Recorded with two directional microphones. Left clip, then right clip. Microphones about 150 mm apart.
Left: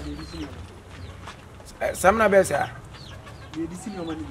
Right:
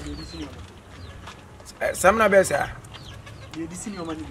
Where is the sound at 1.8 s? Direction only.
Centre (ahead or behind).